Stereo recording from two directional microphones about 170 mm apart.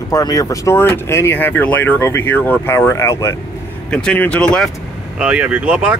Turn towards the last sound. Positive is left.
turn(degrees=-10)  # may be behind; listen again after turning